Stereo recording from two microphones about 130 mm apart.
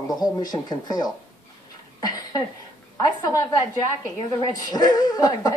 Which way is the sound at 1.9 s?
30° left (ahead or behind).